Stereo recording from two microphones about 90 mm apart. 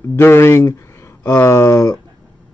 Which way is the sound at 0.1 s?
25° left (ahead or behind).